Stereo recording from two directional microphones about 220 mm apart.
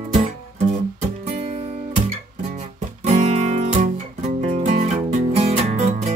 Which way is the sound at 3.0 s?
30° right (ahead or behind).